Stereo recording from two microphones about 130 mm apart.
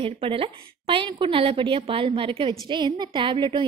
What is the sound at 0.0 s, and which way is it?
A woman's voice, 45° right (ahead or behind).